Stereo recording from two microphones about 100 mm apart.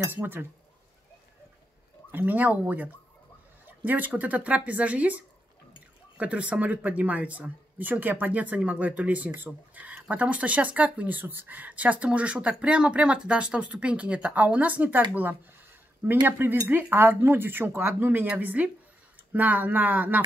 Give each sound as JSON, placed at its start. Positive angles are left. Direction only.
{"t": 0.0, "sound": "speech", "side_deg": -20}
{"t": 2.0, "sound": "speech", "side_deg": -20}